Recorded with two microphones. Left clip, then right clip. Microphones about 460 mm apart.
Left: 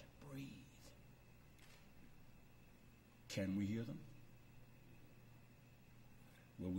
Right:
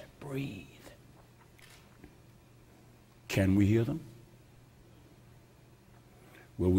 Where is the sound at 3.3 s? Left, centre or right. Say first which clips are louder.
Right 16 dB; right.